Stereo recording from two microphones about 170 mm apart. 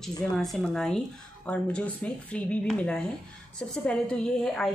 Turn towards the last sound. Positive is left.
turn(degrees=5)  # may be behind; listen again after turning